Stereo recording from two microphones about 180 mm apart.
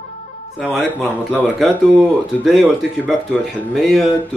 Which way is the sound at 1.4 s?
5° right (ahead or behind).